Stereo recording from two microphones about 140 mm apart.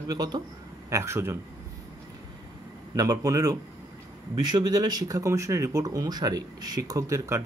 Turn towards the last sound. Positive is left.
turn(degrees=-25)  # may be behind; listen again after turning